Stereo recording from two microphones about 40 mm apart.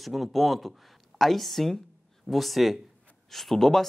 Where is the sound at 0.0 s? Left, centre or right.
Centre.